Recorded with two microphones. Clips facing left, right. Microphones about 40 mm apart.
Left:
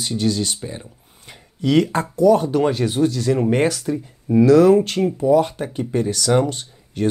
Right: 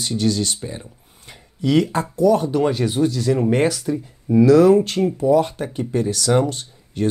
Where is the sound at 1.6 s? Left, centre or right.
Left.